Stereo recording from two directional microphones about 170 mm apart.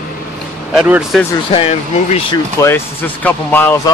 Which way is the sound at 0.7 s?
5° right (ahead or behind).